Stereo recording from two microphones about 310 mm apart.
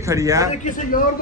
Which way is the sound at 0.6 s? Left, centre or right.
Left.